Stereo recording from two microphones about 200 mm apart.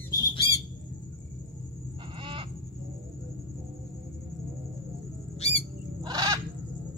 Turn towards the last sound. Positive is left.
turn(degrees=-20)  # may be behind; listen again after turning